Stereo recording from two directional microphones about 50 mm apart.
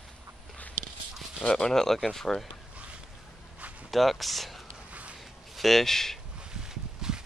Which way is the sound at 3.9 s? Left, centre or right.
Centre.